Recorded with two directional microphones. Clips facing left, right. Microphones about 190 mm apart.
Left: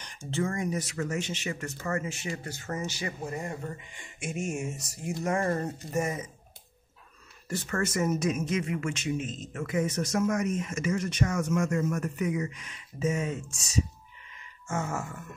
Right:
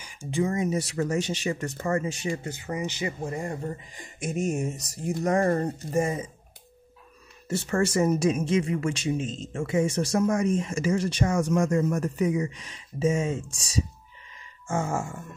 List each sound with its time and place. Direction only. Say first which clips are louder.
0.0 s speech: right 4 dB; 10° right (ahead or behind); by 2.5 s 30° right (ahead or behind)
2.5 s speech: right 3 dB; 15° right (ahead or behind)
3.2 s speech: right 4 dB; 30° right (ahead or behind)
7.4 s speech: right 5 dB; 25° right (ahead or behind)